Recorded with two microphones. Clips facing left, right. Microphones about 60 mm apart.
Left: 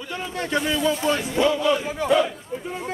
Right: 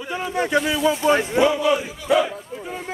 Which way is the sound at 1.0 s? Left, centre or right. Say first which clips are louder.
Right 5 dB; right.